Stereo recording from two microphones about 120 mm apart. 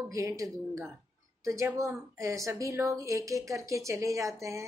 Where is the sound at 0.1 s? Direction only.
25° right (ahead or behind).